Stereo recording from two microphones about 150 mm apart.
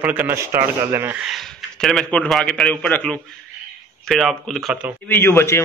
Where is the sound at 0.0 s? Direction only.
10° right (ahead or behind).